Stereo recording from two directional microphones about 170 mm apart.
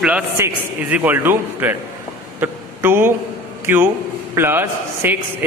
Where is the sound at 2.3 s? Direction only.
15° right (ahead or behind).